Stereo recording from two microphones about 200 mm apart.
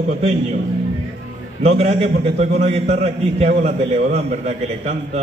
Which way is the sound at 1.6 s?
35° right (ahead or behind).